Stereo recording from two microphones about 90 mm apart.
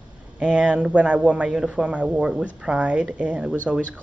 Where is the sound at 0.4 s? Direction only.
10° right (ahead or behind).